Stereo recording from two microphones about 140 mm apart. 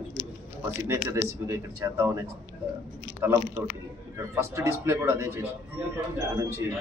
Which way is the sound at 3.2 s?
15° right (ahead or behind).